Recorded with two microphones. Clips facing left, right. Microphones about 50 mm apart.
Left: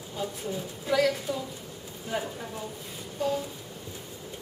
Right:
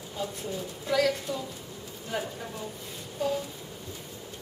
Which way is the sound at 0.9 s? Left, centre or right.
Centre.